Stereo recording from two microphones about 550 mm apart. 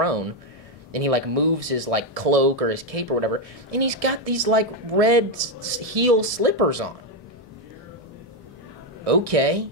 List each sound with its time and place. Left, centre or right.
0.0 s speech: right
9.0 s speech: right